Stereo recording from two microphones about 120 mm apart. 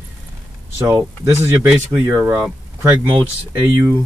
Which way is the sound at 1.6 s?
20° right (ahead or behind).